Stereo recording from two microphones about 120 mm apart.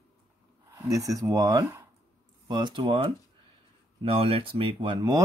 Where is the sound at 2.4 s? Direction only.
35° right (ahead or behind).